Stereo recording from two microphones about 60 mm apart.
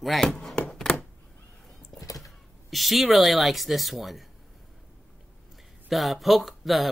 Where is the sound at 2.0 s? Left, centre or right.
Left.